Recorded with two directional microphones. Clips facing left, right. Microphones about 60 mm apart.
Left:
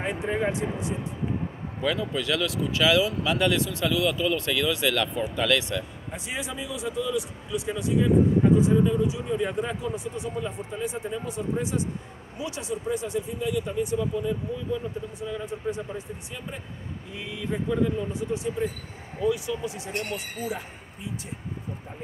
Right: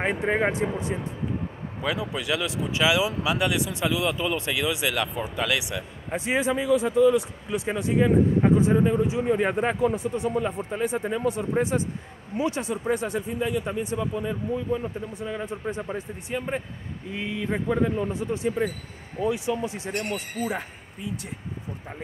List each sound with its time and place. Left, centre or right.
0.0 s speech: right
1.8 s speech: centre
6.1 s speech: right
15.9 s speech: right
19.2 s speech: right